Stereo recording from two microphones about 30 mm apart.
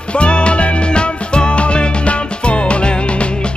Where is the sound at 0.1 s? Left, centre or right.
Left.